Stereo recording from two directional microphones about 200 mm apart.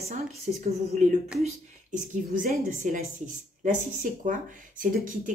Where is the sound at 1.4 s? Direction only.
40° right (ahead or behind).